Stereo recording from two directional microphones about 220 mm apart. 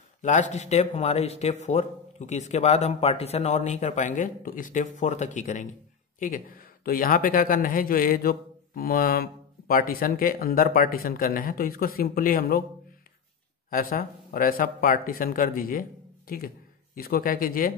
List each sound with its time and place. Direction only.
0.2 s speech: 35° left (ahead or behind)
13.7 s speech: 40° left (ahead or behind)